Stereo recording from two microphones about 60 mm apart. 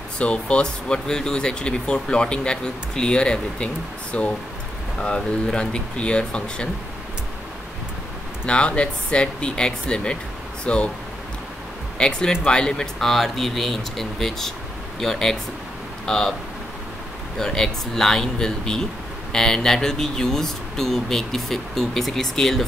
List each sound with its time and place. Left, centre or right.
0.2 s speech: centre
8.5 s speech: centre
12.0 s speech: centre
13.1 s speech: centre
17.4 s speech: centre